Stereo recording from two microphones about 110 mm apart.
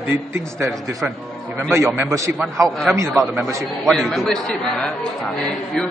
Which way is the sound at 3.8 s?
5° left (ahead or behind).